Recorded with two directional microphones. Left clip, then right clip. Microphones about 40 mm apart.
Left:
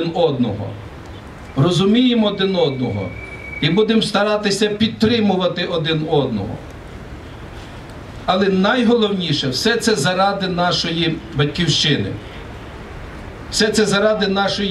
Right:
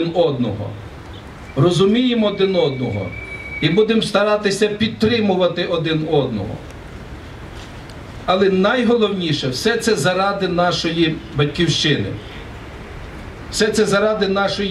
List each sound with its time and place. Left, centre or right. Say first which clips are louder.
0.0 s a man's voice: even; centre
1.5 s speech: right 1 dB; centre
8.3 s speech: right 1 dB; centre
13.5 s speech: even; centre